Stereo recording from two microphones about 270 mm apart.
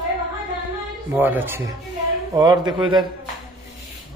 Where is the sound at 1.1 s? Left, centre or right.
Centre.